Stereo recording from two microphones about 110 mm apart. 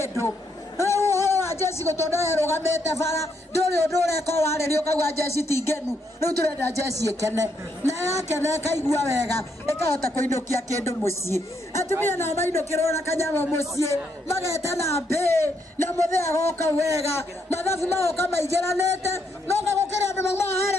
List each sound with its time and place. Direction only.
0.7 s speech: 25° left (ahead or behind)
6.7 s speech: 30° right (ahead or behind)
7.8 s speech: 25° left (ahead or behind)